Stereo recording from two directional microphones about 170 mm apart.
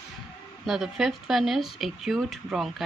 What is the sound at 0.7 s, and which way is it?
Speech, centre (ahead or behind).